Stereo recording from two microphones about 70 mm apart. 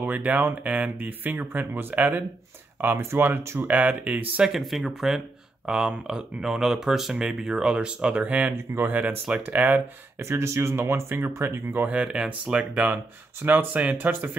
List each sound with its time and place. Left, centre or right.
0.0 s speech: right
4.5 s speech: centre; by 10.2 s right
10.2 s speech: right
11.9 s speech: centre